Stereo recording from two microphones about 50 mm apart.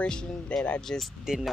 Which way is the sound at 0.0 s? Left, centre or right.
Centre.